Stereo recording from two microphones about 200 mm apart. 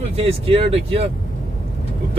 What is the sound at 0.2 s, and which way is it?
Speech, 30° right (ahead or behind).